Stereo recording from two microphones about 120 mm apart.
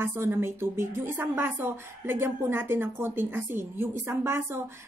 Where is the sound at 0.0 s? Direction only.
20° right (ahead or behind).